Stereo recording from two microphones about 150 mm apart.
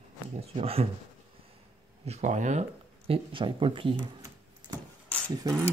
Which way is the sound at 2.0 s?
50° right (ahead or behind).